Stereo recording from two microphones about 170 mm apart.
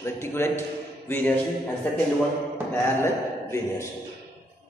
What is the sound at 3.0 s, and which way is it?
Speech, 15° left (ahead or behind).